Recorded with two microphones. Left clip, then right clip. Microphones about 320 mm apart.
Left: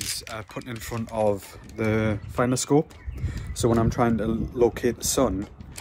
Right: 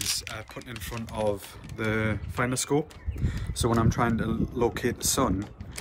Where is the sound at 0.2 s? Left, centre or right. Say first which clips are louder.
Left 3 dB; centre.